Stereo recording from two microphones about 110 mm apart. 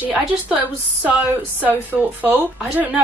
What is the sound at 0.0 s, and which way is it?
Speech, 5° right (ahead or behind).